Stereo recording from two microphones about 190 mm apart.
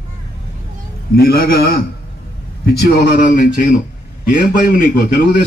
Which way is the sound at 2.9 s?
45° left (ahead or behind).